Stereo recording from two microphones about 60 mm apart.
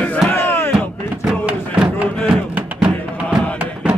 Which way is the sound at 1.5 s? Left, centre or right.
Right.